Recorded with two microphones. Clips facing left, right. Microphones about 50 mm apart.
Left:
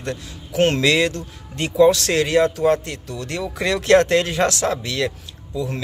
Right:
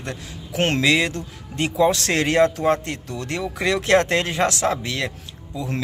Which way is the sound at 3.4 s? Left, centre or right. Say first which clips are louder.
Left 1 dB; centre.